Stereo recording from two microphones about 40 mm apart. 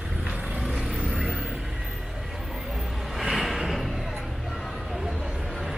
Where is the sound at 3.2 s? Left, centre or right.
Centre.